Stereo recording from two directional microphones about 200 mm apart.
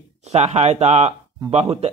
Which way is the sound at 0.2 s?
35° right (ahead or behind).